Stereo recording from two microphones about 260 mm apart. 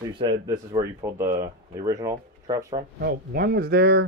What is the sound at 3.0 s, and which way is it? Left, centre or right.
Speech, right.